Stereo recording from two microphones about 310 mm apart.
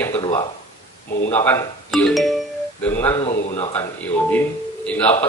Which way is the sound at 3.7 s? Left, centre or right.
Centre.